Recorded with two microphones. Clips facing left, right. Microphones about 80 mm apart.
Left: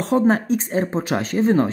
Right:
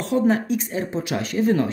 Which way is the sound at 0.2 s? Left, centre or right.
Left.